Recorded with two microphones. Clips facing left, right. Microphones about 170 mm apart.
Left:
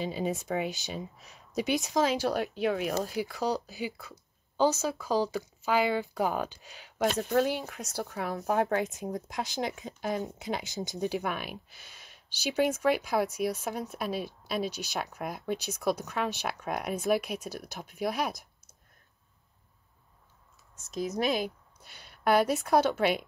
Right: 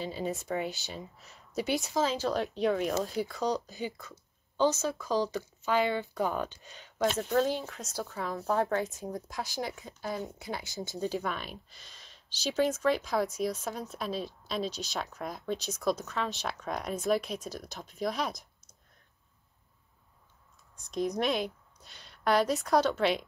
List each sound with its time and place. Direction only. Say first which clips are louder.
0.0 s speech: left 3 dB; 15° left (ahead or behind)
2.3 s speech: even; 5° left (ahead or behind)
7.8 s a woman's voice: left 2 dB; 70° left (ahead or behind)
8.1 s speech: left 1 dB; 15° left (ahead or behind)
20.8 s a woman's voice: even; 5° left (ahead or behind)